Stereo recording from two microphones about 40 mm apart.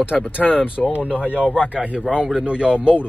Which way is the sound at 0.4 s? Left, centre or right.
Left.